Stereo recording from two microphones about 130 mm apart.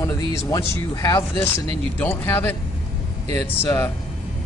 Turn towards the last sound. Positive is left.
turn(degrees=20)  # may be behind; listen again after turning